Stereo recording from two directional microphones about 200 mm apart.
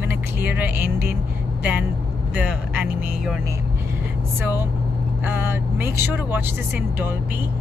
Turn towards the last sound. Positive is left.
turn(degrees=-10)  # may be behind; listen again after turning